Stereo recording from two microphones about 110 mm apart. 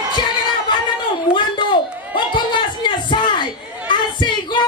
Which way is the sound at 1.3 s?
45° left (ahead or behind).